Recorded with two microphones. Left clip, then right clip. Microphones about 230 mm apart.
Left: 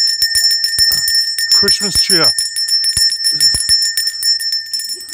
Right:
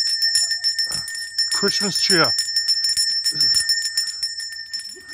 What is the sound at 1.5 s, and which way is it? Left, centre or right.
Bell, centre.